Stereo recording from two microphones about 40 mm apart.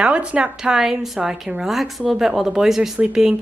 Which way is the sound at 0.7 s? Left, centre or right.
Centre.